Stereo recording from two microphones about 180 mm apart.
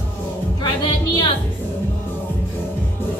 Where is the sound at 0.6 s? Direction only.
25° left (ahead or behind).